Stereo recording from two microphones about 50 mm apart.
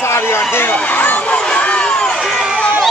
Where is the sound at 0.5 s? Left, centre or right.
Left.